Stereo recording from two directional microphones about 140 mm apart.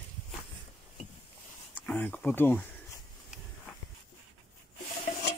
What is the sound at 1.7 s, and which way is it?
Speech, 10° left (ahead or behind).